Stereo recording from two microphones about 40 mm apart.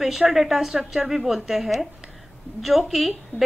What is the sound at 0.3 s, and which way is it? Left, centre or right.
A woman's voice, centre.